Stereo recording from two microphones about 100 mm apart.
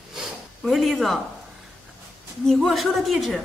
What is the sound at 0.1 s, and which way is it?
Snort, 5° right (ahead or behind).